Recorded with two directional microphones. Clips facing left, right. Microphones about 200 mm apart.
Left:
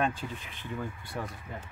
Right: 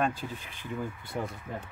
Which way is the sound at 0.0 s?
10° right (ahead or behind).